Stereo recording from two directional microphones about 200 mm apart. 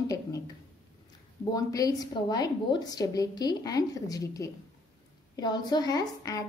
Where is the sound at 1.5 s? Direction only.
20° left (ahead or behind).